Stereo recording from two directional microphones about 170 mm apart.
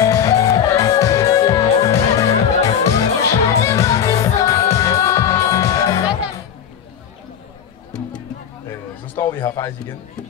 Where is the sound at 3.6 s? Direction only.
20° left (ahead or behind).